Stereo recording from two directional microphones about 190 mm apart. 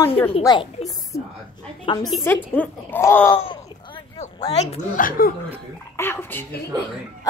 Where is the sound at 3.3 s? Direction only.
25° left (ahead or behind).